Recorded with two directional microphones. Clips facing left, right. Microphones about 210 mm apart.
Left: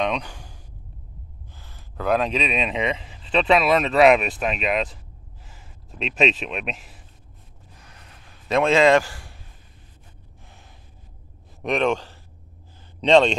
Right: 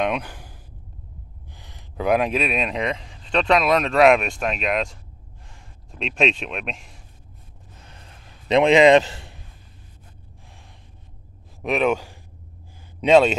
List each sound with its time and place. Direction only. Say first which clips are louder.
0.0 s speech: right 1 dB; 5° right (ahead or behind)
1.6 s speech: right 3 dB; 15° right (ahead or behind); by 7.0 s 5° left (ahead or behind)
8.5 s a man's voice: right 3 dB; 20° right (ahead or behind)
11.6 s speech: right 1 dB; 5° right (ahead or behind)